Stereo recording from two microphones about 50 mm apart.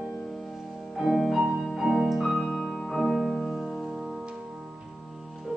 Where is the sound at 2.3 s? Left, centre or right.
Centre.